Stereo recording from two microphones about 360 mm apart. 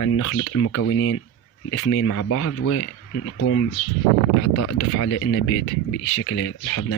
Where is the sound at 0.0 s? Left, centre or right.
Left.